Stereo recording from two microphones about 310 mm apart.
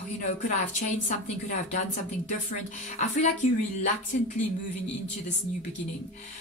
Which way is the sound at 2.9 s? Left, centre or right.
Left.